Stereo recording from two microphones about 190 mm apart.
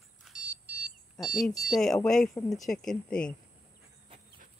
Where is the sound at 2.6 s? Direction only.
5° left (ahead or behind).